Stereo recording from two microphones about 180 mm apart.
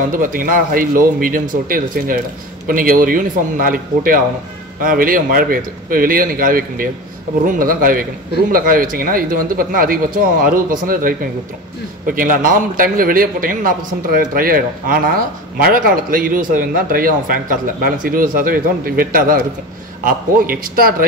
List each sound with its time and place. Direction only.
0.1 s a man's voice: 50° right (ahead or behind)